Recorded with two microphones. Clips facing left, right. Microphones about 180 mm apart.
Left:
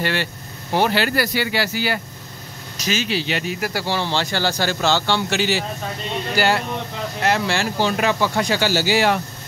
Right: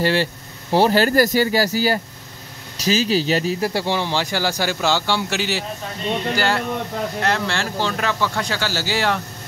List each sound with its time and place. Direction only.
0.0 s speech: 30° right (ahead or behind); by 9.2 s 10° left (ahead or behind)